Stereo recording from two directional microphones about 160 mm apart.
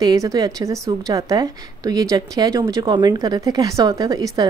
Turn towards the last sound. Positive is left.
turn(degrees=-20)  # may be behind; listen again after turning